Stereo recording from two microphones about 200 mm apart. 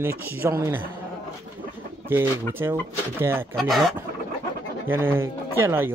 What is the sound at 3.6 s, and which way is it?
Speech, centre (ahead or behind).